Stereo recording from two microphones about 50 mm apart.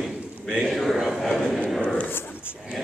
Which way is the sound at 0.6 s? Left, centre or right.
Centre.